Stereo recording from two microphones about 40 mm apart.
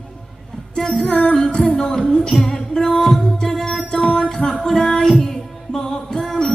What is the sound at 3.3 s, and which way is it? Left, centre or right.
Music, left.